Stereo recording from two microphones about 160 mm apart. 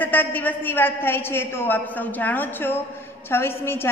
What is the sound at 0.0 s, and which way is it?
A woman's voice, 10° left (ahead or behind).